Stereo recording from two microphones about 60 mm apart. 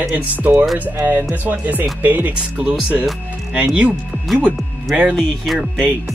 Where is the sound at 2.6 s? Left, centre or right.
Centre.